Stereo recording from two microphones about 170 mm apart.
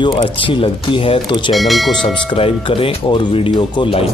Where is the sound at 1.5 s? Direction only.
Centre (ahead or behind).